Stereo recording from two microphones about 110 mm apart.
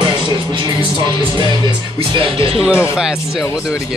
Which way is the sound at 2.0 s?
50° right (ahead or behind).